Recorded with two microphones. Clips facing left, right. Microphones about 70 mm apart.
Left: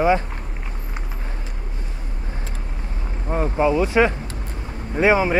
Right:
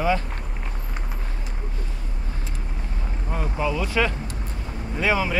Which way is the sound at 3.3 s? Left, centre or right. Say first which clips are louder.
Left 7 dB; left.